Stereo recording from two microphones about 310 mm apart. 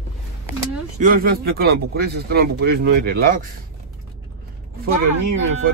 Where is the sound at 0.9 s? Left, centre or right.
Right.